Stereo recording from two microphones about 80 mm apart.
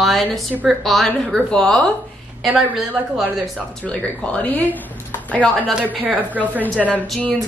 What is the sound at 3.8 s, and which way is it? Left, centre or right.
Speech, centre.